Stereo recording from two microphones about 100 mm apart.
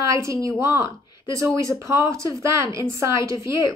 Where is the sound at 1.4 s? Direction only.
30° right (ahead or behind).